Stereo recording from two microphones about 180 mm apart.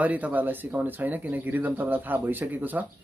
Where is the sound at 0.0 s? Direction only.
10° right (ahead or behind).